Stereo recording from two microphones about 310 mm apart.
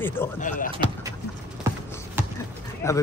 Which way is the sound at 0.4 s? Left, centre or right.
Left.